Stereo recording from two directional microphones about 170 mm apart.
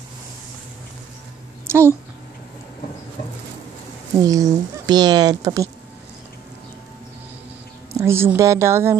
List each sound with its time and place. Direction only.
1.7 s a woman's voice: 15° right (ahead or behind)
4.2 s speech: 20° right (ahead or behind)
7.9 s a woman's voice: 15° right (ahead or behind)